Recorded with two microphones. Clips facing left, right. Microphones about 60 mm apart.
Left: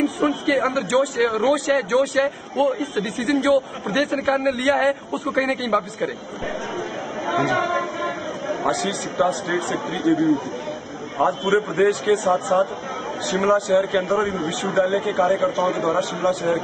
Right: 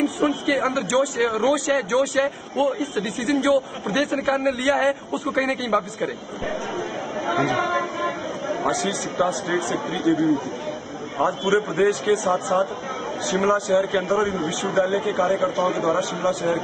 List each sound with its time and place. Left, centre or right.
0.0 s a man's voice: centre
10.0 s speech: left
11.1 s a man's voice: centre